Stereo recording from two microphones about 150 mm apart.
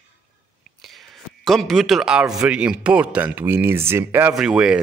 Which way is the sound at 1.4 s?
Centre (ahead or behind).